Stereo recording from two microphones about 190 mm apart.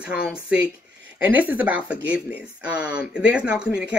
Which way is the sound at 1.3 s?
10° right (ahead or behind).